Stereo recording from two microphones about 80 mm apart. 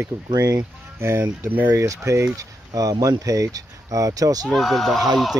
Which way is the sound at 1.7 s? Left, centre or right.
Right.